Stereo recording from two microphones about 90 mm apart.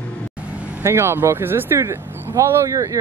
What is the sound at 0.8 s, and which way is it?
Speech, 30° right (ahead or behind).